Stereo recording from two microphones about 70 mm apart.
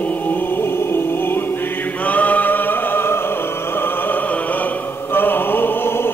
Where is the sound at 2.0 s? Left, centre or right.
Left.